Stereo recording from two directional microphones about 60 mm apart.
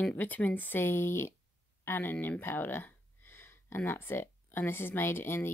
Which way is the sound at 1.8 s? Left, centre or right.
Left.